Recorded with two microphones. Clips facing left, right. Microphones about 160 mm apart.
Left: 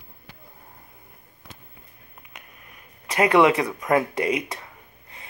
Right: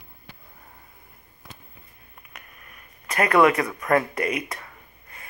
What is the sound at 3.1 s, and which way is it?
Speech, 20° left (ahead or behind).